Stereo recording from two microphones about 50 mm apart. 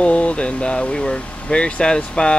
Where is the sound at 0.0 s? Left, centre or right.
Left.